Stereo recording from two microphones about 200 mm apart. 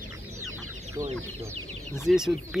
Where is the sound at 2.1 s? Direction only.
Centre (ahead or behind).